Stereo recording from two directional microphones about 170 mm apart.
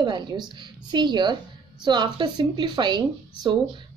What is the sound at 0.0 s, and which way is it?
Speech, 25° right (ahead or behind).